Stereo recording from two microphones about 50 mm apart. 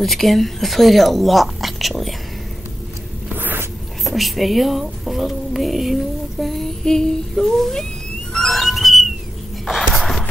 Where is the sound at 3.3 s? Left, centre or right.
Right.